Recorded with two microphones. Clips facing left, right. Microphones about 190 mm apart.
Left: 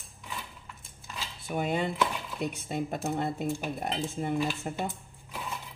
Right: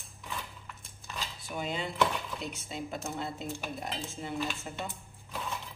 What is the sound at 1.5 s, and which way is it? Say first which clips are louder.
Speech: left 7 dB; 55° left (ahead or behind).